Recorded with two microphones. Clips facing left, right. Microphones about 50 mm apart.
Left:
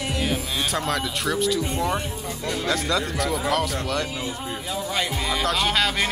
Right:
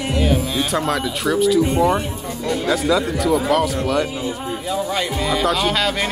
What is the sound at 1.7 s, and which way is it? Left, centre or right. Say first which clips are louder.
Speech: right 8 dB; centre.